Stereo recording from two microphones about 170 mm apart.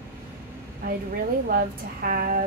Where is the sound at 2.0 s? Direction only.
55° right (ahead or behind).